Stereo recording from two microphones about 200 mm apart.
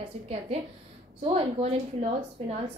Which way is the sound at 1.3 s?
35° right (ahead or behind).